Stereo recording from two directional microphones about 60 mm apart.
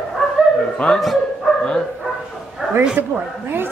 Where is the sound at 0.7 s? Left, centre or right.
Centre.